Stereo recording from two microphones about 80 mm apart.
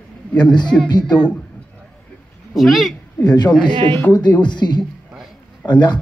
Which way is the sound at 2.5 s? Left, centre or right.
Centre.